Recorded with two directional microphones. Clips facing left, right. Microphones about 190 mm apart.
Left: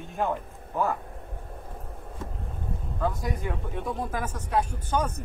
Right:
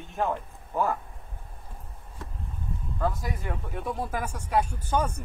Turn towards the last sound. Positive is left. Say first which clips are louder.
# even
turn(degrees=-10)  # may be behind; listen again after turning